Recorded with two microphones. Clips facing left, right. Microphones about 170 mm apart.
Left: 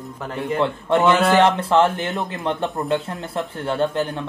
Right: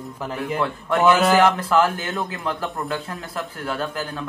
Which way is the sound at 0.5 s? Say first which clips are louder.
Left 3 dB; 25° left (ahead or behind).